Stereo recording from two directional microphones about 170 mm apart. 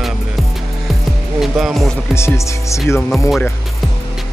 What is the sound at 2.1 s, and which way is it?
Speech, 15° left (ahead or behind).